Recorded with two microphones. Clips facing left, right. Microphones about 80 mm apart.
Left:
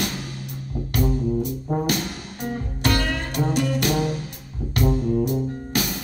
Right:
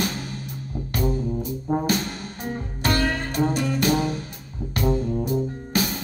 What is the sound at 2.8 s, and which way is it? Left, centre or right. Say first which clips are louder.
Music: right 1 dB; right.